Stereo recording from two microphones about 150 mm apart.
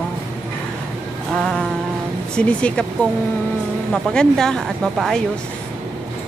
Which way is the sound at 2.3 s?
5° left (ahead or behind).